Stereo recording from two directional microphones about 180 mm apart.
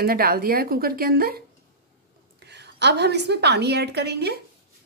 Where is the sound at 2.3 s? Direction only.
70° right (ahead or behind).